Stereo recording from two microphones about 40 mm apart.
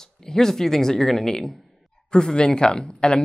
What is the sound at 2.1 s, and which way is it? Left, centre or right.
Speech, left.